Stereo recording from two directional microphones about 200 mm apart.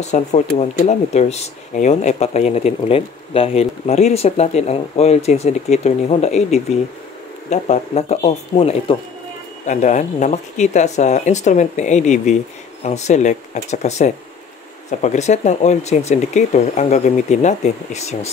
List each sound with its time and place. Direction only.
0.0 s speech: 35° left (ahead or behind)